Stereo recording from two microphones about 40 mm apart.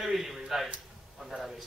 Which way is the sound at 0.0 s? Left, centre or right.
Centre.